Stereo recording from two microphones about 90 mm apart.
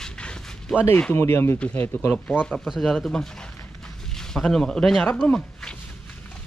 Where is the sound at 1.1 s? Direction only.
30° left (ahead or behind).